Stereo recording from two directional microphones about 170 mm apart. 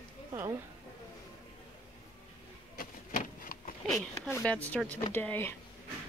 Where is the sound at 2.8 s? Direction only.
55° left (ahead or behind).